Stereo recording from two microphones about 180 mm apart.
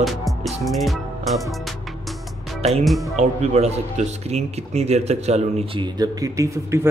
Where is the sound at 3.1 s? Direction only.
40° right (ahead or behind).